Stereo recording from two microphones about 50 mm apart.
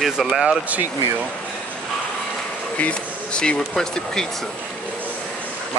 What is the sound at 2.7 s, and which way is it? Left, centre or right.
Speech, left.